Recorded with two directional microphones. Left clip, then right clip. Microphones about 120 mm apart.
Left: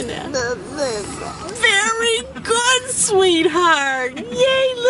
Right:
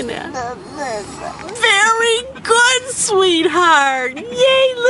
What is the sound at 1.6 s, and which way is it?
Speech, 15° right (ahead or behind).